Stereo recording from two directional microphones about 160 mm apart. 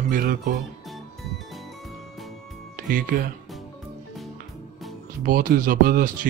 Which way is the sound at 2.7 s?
55° right (ahead or behind).